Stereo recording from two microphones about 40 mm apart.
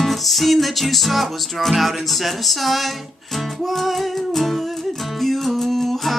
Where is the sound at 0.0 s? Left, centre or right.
Centre.